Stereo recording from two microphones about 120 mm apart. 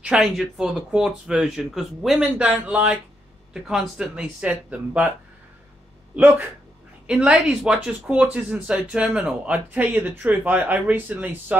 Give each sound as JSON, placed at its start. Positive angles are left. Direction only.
{"t": 0.0, "sound": "speech", "side_deg": -5}
{"t": 2.2, "sound": "speech", "side_deg": -15}
{"t": 6.1, "sound": "speech", "side_deg": -15}
{"t": 7.1, "sound": "speech", "side_deg": -5}